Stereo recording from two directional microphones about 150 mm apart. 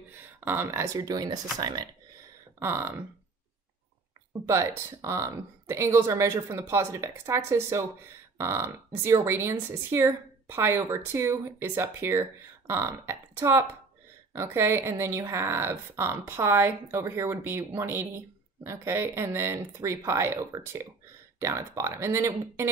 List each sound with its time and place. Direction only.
0.4 s speech: 15° right (ahead or behind)
4.3 s speech: 20° right (ahead or behind)